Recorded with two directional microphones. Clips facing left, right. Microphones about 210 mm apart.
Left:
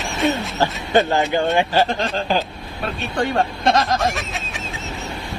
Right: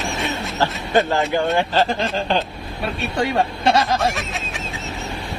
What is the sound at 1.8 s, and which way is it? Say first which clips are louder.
Duck: even; centre (ahead or behind).